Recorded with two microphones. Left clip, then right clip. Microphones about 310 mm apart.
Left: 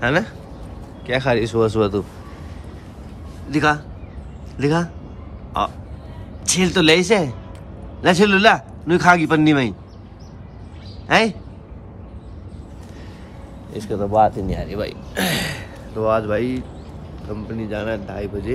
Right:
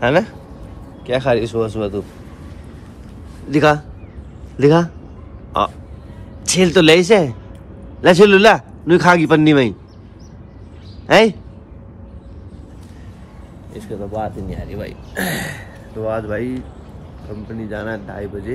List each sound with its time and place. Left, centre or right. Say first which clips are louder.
0.0 s a man's voice: right 4 dB; centre
3.4 s a man's voice: right 4 dB; centre
6.4 s a man's voice: right 4 dB; centre
11.1 s a man's voice: right 5 dB; centre
13.7 s speech: left 8 dB; centre
15.1 s speech: left 1 dB; centre
17.6 s a man's voice: left 1 dB; centre